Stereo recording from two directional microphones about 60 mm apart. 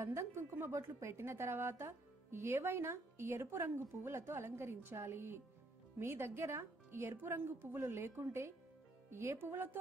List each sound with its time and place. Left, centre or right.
0.0 s a woman's voice: right